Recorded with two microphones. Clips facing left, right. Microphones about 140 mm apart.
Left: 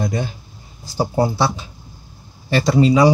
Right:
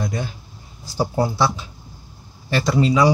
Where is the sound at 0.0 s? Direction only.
30° left (ahead or behind).